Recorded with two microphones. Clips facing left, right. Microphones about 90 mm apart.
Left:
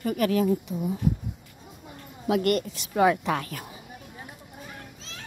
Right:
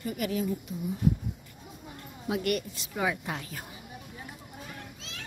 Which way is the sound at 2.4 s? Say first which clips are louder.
Left 5 dB; 70° left (ahead or behind).